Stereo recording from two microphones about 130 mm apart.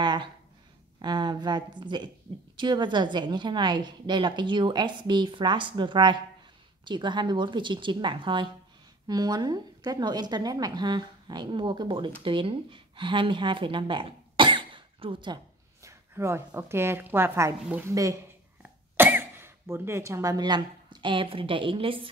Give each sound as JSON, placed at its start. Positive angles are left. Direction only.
{"t": 0.0, "sound": "a sound", "side_deg": -35}
{"t": 1.0, "sound": "a woman's voice", "side_deg": -35}
{"t": 15.8, "sound": "a woman's voice", "side_deg": -20}
{"t": 18.6, "sound": "speech", "side_deg": -15}